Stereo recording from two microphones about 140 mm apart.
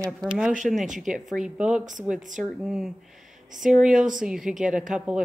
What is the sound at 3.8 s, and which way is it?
A woman's voice, 5° right (ahead or behind).